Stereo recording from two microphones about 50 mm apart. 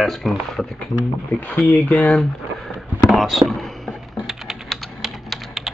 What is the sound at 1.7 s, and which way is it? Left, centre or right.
Speech, left.